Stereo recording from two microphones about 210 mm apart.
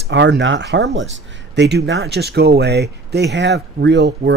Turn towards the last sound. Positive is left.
turn(degrees=-55)  # may be behind; listen again after turning